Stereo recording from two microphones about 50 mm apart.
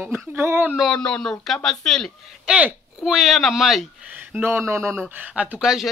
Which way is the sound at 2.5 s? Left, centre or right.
Centre.